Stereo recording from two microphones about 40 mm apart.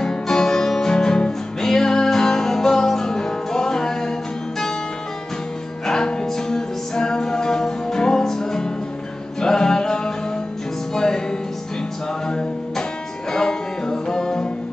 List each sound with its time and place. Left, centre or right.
0.0 s music: centre
5.9 s music: centre
12.3 s music: centre